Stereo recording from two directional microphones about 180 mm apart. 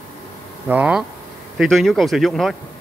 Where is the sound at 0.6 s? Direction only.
5° right (ahead or behind).